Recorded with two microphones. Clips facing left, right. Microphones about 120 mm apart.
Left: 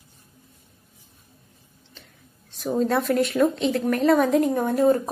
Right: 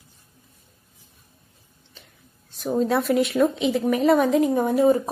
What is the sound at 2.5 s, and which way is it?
A woman's voice, centre (ahead or behind).